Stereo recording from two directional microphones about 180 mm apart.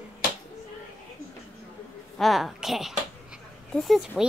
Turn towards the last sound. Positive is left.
turn(degrees=0)  # may be behind; listen again after turning